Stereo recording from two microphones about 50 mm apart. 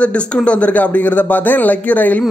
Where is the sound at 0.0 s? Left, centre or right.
Left.